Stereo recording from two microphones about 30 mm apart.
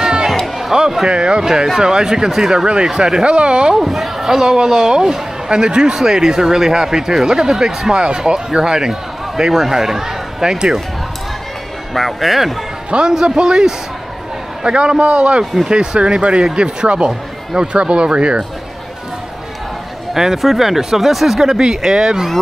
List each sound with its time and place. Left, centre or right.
0.0 s music: centre
0.7 s a sound: right
1.0 s speech: right
3.3 s a man's voice: right
3.7 s speech: centre
4.3 s speech: centre
9.5 s speech: centre
11.9 s a man's voice: centre; by 16.4 s right
16.4 s a man's voice: right
20.4 s speech: centre